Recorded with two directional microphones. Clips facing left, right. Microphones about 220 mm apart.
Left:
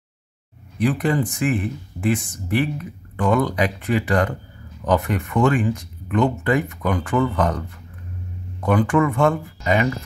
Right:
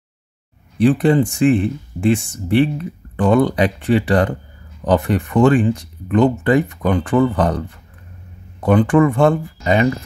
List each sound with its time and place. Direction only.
0.7 s speech: 30° right (ahead or behind)
8.6 s speech: 30° right (ahead or behind)